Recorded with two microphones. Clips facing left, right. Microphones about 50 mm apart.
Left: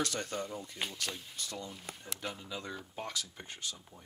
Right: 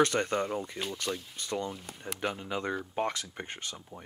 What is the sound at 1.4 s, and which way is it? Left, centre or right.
Speech, right.